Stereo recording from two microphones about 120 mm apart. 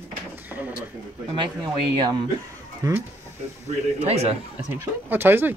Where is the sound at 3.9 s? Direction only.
60° right (ahead or behind).